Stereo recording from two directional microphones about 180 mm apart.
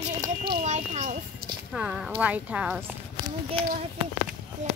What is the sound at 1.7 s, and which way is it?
Speech, 5° right (ahead or behind).